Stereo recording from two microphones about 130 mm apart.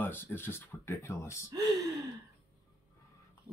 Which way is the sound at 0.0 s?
15° left (ahead or behind).